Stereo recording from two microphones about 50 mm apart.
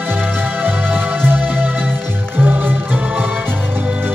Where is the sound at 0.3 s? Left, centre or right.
Right.